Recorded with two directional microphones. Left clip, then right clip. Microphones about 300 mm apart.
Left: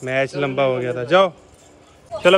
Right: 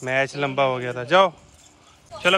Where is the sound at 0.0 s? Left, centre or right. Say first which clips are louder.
Left 2 dB; centre.